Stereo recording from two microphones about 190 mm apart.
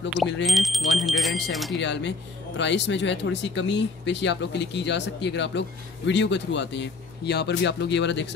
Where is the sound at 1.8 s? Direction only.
70° left (ahead or behind).